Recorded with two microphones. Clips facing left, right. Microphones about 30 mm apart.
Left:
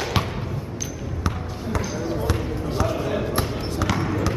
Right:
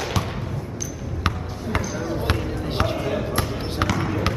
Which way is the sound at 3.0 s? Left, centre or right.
Centre.